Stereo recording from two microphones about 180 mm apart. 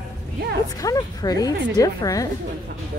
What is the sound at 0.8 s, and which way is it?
A woman's voice, 20° left (ahead or behind).